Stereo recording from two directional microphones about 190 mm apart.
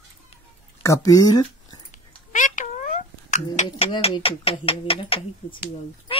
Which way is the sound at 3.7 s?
25° left (ahead or behind).